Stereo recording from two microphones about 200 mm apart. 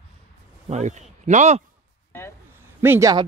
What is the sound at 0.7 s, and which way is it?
Speech, 35° right (ahead or behind).